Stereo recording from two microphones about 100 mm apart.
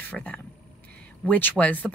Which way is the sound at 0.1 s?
15° left (ahead or behind).